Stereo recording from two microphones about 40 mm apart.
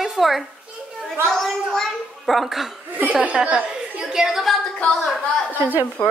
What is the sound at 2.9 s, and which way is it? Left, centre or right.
Speech, right.